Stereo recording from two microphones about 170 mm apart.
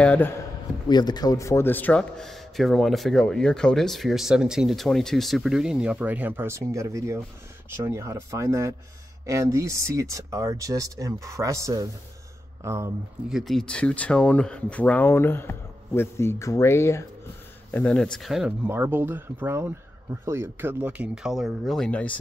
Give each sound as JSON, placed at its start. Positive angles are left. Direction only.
{"t": 0.0, "sound": "a man's voice", "side_deg": 10}
{"t": 0.8, "sound": "a man's voice", "side_deg": 25}
{"t": 13.3, "sound": "a man's voice", "side_deg": 0}